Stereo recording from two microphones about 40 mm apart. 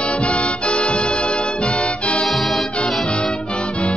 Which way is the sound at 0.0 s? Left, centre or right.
Left.